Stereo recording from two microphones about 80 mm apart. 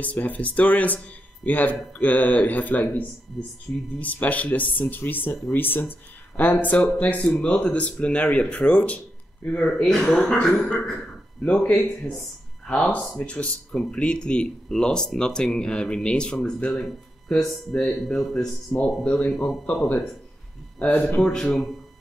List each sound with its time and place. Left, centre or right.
0.0 s speech: centre
11.4 s speech: centre
12.6 s speech: centre
13.2 s speech: centre
18.7 s speech: centre
21.2 s speech: centre